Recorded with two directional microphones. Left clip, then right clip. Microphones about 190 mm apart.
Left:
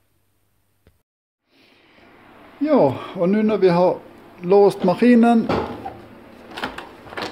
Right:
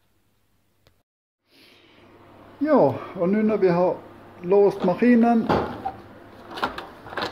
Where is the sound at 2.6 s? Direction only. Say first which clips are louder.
Left 2 dB; 25° left (ahead or behind).